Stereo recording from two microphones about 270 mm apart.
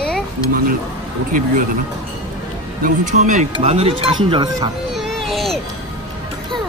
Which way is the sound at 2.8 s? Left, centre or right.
Right.